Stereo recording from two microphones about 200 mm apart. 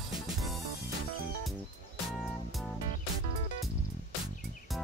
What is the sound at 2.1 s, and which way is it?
Music, centre (ahead or behind).